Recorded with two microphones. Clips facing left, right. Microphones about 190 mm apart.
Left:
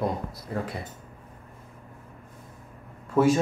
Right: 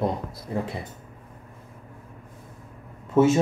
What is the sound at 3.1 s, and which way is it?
Speech, 25° right (ahead or behind).